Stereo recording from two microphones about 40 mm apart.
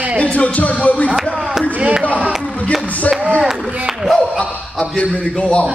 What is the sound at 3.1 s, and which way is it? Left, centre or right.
Speech, right.